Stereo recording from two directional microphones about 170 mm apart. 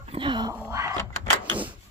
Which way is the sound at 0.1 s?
30° right (ahead or behind).